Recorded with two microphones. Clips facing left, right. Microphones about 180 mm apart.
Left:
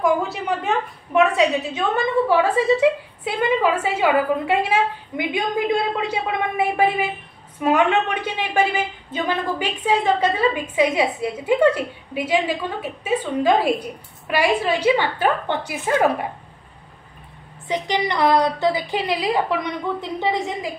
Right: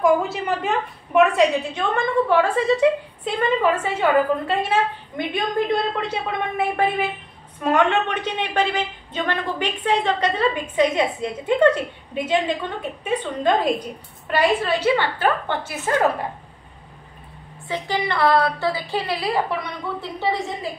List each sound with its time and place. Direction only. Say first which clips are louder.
0.0 s a woman's voice: right 2 dB; centre (ahead or behind); by 15.9 s 15° left (ahead or behind)
17.6 s a woman's voice: left 2 dB; 15° left (ahead or behind)